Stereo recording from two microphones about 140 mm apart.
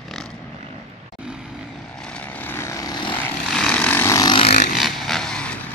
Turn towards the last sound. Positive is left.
turn(degrees=5)  # may be behind; listen again after turning